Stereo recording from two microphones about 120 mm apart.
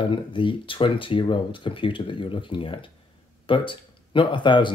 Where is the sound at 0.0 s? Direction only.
45° left (ahead or behind).